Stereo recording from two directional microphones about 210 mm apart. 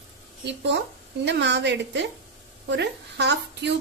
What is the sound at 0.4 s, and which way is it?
A woman's voice, 55° right (ahead or behind).